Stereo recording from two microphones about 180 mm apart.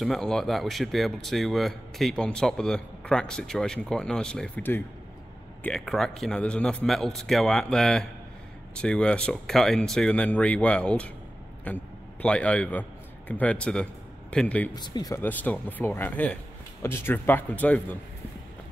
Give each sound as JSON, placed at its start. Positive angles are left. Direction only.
{"t": 0.0, "sound": "a man's voice", "side_deg": 0}
{"t": 14.8, "sound": "speech", "side_deg": 25}
{"t": 15.2, "sound": "speech", "side_deg": 10}